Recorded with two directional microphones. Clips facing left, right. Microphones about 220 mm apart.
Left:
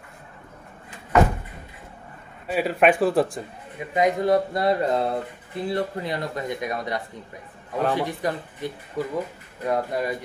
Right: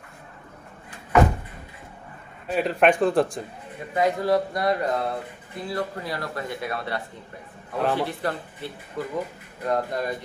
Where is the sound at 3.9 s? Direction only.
20° left (ahead or behind).